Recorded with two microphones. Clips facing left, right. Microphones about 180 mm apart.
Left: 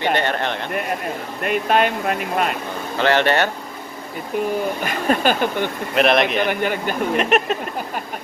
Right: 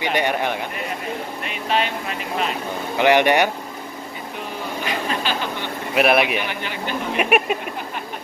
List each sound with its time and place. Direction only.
0.1 s speech: 10° right (ahead or behind)
1.4 s speech: 50° left (ahead or behind)
3.0 s speech: 15° right (ahead or behind)
4.8 s speech: 50° left (ahead or behind)
5.9 s speech: 5° right (ahead or behind)
6.4 s speech: 50° left (ahead or behind)
7.2 s speech: 10° right (ahead or behind)